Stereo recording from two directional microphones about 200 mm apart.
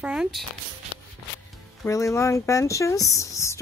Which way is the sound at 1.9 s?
15° left (ahead or behind).